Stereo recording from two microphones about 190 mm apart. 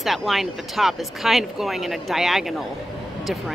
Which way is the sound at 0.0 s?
Centre (ahead or behind).